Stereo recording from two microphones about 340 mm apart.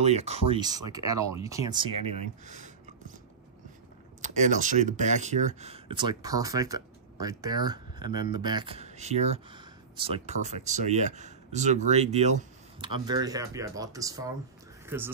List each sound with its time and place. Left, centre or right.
0.0 s speech: centre
2.4 s speech: right
4.2 s speech: right